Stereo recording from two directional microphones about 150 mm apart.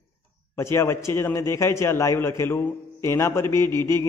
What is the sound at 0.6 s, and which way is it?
A man's voice, 20° left (ahead or behind).